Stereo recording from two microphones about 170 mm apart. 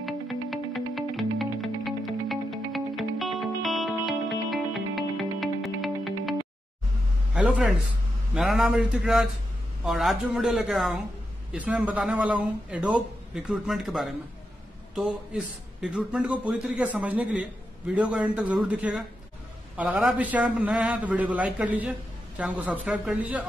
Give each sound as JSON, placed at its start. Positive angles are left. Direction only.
{"t": 0.0, "sound": "music", "side_deg": 0}
{"t": 7.3, "sound": "a man's voice", "side_deg": -5}